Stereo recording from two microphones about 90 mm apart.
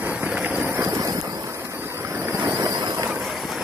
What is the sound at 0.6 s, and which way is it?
Vehicle, 30° right (ahead or behind).